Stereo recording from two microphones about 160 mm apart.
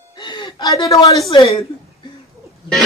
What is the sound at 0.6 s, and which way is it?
Speech, 20° left (ahead or behind).